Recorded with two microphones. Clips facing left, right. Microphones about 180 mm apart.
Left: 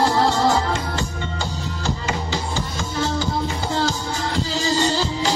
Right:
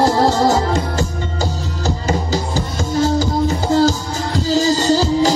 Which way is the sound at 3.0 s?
40° right (ahead or behind).